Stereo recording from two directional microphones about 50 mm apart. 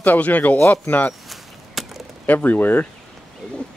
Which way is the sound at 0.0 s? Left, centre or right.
Left.